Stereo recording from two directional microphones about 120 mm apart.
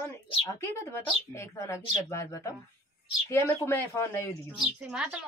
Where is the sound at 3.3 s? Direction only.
25° left (ahead or behind).